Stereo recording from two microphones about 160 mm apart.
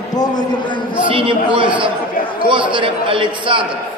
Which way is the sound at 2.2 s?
60° left (ahead or behind).